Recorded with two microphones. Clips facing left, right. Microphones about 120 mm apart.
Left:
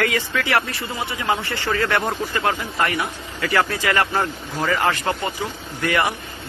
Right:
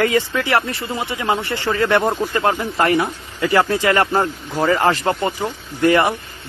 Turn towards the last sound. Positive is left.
turn(degrees=-30)  # may be behind; listen again after turning